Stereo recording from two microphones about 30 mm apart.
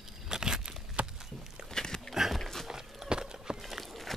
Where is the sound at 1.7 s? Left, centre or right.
Centre.